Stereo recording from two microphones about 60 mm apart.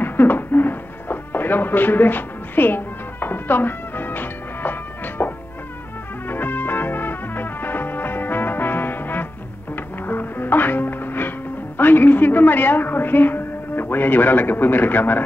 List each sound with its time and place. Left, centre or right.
0.0 s music: left